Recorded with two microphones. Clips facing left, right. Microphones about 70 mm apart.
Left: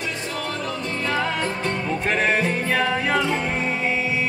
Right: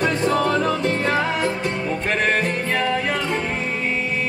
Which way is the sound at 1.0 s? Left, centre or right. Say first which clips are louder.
Even; right.